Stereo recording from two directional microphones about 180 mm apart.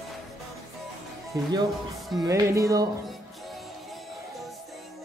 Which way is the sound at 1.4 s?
20° right (ahead or behind).